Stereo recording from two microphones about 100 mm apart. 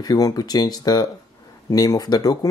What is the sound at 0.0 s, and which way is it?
Speech, 40° left (ahead or behind).